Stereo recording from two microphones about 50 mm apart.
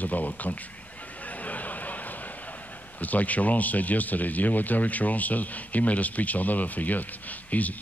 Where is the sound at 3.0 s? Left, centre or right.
Left.